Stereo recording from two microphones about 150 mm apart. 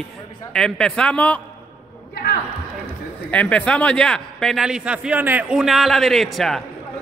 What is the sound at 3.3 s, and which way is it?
A man's voice, 10° left (ahead or behind).